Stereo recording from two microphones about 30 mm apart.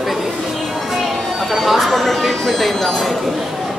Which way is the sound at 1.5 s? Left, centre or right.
Centre.